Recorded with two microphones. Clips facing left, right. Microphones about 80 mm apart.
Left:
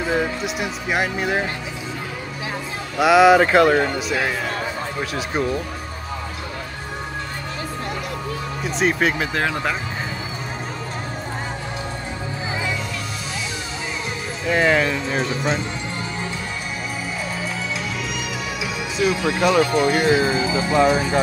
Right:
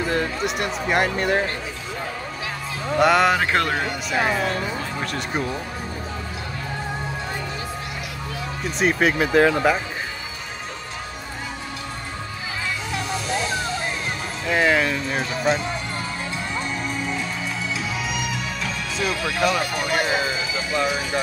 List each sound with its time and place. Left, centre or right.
0.0 s speech: centre
3.0 s speech: centre
8.7 s speech: centre
14.4 s speech: centre
17.7 s music: centre
19.1 s speech: left